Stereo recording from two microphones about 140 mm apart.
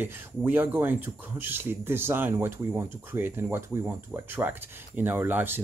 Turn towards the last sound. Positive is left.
turn(degrees=-15)  # may be behind; listen again after turning